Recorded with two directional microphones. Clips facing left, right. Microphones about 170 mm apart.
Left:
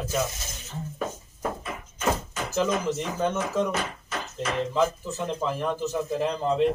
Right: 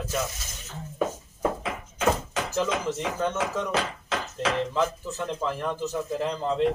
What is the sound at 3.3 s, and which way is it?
Speech, 90° right.